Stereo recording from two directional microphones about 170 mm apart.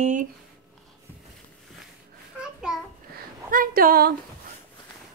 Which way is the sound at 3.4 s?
55° right (ahead or behind).